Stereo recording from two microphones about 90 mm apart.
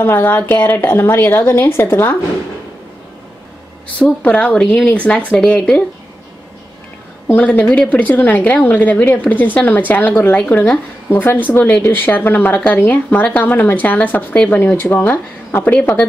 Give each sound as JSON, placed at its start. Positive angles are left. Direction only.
{"t": 0.0, "sound": "a woman's voice", "side_deg": 25}
{"t": 4.0, "sound": "a woman's voice", "side_deg": 15}
{"t": 7.2, "sound": "a woman's voice", "side_deg": 20}